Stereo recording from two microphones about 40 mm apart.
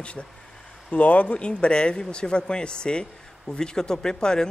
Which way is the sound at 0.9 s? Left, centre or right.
Left.